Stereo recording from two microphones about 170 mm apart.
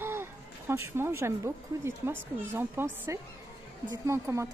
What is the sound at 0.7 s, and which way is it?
A woman's voice, 15° right (ahead or behind).